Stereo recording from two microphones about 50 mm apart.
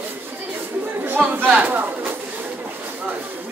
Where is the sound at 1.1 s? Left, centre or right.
Right.